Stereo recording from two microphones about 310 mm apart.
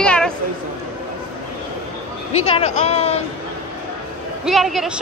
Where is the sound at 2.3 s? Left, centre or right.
Centre.